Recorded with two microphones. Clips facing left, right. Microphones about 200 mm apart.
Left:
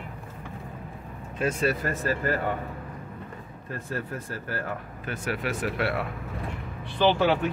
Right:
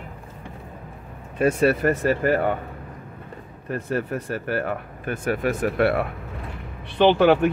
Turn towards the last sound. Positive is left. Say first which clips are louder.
# right 6 dB
turn(degrees=-65)  # may be behind; listen again after turning